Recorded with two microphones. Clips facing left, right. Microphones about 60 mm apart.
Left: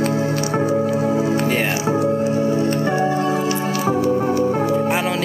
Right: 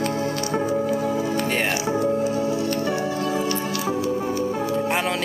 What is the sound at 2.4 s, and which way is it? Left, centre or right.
Music, left.